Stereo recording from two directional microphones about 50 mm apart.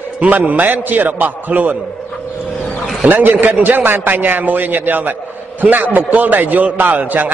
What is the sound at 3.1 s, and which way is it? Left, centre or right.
A man's voice, right.